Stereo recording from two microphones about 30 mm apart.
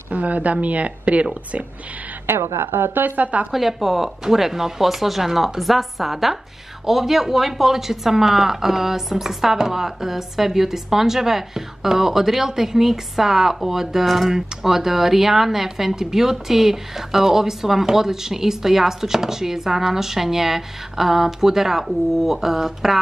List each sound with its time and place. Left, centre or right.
0.1 s speech: right
2.6 s a woman's voice: right
3.5 s speech: centre